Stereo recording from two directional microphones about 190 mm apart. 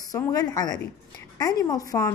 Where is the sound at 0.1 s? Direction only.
20° left (ahead or behind).